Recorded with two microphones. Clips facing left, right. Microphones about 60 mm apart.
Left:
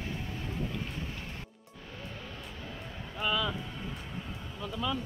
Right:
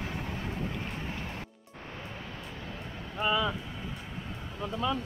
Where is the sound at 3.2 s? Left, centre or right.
Centre.